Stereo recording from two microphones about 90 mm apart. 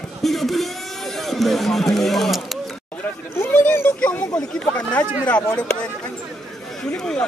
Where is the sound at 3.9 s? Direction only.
10° left (ahead or behind).